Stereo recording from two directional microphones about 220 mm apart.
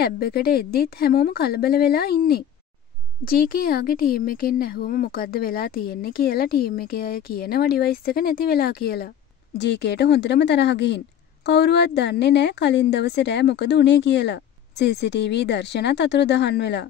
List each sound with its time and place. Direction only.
0.0 s speech: 45° left (ahead or behind)